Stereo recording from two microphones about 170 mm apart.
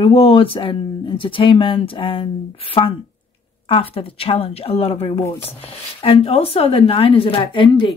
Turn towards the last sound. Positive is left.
turn(degrees=30)  # may be behind; listen again after turning